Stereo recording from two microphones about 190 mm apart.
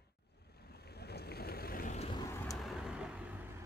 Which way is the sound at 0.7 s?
55° left (ahead or behind).